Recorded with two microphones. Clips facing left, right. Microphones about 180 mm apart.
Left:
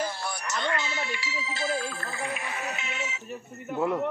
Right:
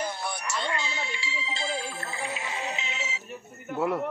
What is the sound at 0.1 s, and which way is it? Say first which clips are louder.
Music: even; 25° right (ahead or behind).